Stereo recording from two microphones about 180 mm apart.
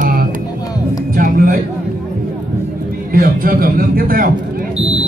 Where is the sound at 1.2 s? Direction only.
50° right (ahead or behind).